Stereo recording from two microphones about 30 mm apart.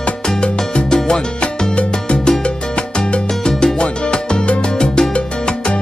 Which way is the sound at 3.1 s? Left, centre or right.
Left.